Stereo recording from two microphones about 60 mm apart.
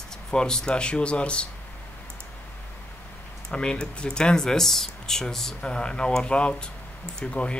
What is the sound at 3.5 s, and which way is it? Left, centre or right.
Speech, centre.